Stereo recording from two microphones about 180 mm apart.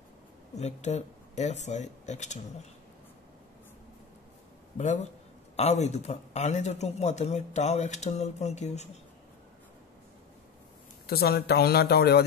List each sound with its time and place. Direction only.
0.6 s a man's voice: 40° left (ahead or behind)
4.7 s a man's voice: 40° left (ahead or behind)
11.1 s speech: 60° left (ahead or behind)